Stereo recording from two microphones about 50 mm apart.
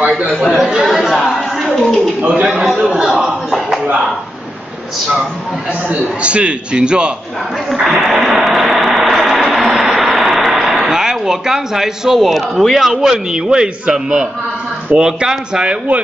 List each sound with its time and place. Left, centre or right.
0.3 s speech: centre
0.6 s a man's voice: centre
0.9 s a sound: centre
2.2 s a man's voice: right
5.9 s a man's voice: right
7.8 s a sound: centre
12.2 s a man's voice: centre; by 16.0 s right